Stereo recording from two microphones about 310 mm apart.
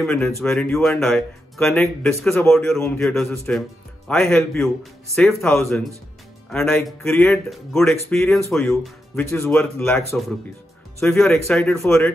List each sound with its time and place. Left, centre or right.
0.0 s speech: centre